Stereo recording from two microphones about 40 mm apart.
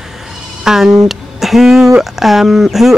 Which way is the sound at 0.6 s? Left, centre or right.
Centre.